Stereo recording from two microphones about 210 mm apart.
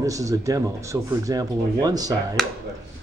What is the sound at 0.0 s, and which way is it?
Speech, 15° right (ahead or behind).